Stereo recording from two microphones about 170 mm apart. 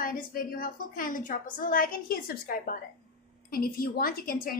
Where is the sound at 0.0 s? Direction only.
60° left (ahead or behind).